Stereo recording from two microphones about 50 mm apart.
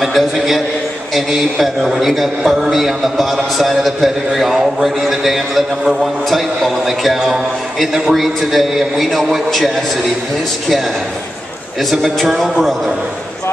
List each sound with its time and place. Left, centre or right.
0.0 s a man's voice: centre
11.9 s a man's voice: centre